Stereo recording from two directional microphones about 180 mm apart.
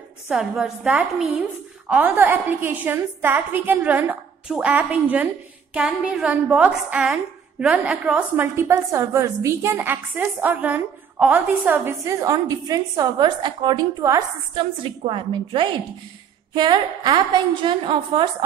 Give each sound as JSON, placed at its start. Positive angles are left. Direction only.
{"t": 0.3, "sound": "a woman's voice", "side_deg": 0}